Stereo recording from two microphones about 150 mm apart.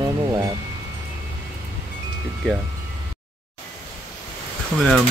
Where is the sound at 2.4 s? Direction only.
5° left (ahead or behind).